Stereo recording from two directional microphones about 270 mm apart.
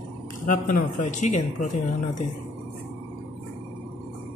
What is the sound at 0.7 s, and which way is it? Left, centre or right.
Speech, left.